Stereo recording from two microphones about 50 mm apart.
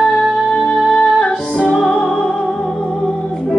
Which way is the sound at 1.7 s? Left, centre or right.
Centre.